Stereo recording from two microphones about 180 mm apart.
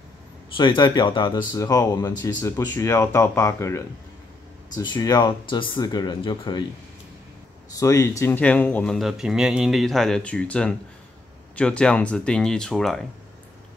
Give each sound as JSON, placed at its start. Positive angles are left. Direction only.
{"t": 0.6, "sound": "speech", "side_deg": 25}
{"t": 7.7, "sound": "speech", "side_deg": 15}